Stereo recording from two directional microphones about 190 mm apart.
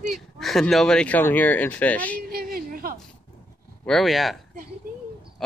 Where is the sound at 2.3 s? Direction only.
50° right (ahead or behind).